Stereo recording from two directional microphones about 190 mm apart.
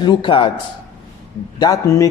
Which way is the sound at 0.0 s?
25° left (ahead or behind).